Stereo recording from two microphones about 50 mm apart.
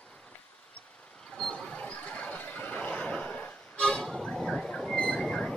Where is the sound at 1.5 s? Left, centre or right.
Left.